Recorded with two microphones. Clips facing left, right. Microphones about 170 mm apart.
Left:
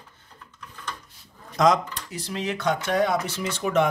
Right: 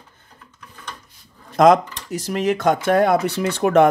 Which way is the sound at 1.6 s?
50° right (ahead or behind).